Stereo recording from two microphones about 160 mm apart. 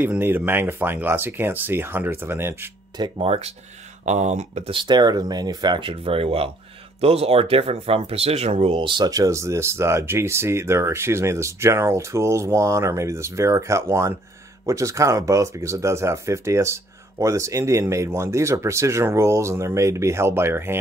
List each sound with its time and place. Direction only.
0.0 s speech: 10° right (ahead or behind)
3.0 s speech: 35° right (ahead or behind)
4.7 s speech: 25° right (ahead or behind)